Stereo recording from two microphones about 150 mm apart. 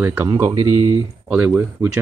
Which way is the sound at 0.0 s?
15° right (ahead or behind).